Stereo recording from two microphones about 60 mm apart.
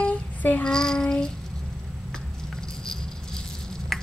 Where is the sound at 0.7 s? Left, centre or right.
Centre.